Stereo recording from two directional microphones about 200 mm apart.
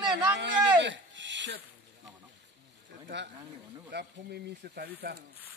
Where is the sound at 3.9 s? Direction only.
55° right (ahead or behind).